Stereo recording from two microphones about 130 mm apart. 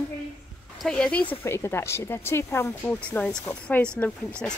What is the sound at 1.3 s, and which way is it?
A woman's voice, 20° left (ahead or behind).